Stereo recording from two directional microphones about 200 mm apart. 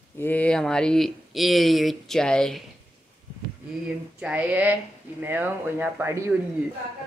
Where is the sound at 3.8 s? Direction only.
5° right (ahead or behind).